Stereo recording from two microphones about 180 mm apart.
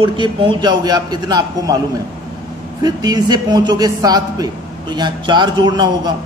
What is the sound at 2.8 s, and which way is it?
A man's voice, 20° right (ahead or behind).